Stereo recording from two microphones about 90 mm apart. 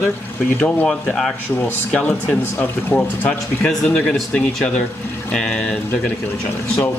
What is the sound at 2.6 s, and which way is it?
Speech, 20° left (ahead or behind).